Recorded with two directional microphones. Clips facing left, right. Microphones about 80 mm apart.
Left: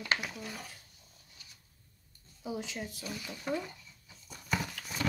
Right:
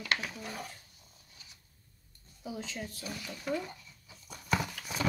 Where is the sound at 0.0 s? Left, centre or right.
Centre.